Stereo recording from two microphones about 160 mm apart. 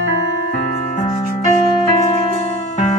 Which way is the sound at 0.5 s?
50° left (ahead or behind).